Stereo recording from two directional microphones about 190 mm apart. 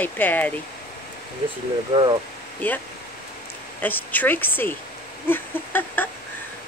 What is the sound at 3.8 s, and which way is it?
Speech, 10° left (ahead or behind).